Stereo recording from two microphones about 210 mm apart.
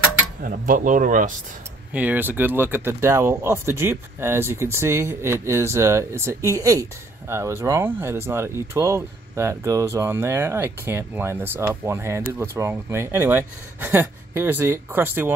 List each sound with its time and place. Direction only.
0.4 s speech: 40° right (ahead or behind)
2.0 s speech: 10° right (ahead or behind)